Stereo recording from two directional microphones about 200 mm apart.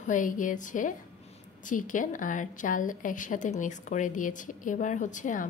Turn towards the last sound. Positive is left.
turn(degrees=40)  # may be behind; listen again after turning